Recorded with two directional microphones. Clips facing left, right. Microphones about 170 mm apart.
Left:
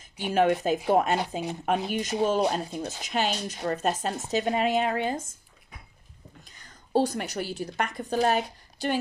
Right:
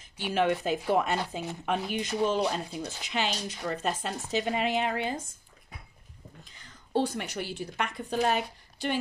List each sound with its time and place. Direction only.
0.2 s speech: 45° left (ahead or behind)
6.6 s a woman's voice: 40° left (ahead or behind)